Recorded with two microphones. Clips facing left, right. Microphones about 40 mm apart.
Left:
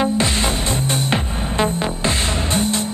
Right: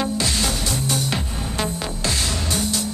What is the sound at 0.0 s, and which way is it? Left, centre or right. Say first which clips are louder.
Music: left 4 dB; left.